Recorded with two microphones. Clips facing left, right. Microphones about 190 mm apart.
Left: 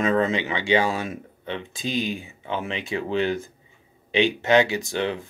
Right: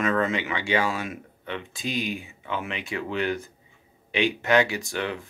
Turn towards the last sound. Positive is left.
turn(degrees=25)  # may be behind; listen again after turning